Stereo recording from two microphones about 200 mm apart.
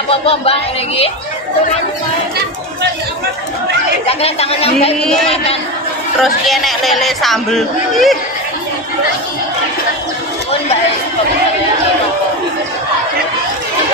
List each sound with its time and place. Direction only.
0.1 s speech: 30° left (ahead or behind)
4.0 s speech: 30° left (ahead or behind)
5.0 s speech: 5° left (ahead or behind)
5.3 s speech: 30° left (ahead or behind)
6.2 s speech: centre (ahead or behind)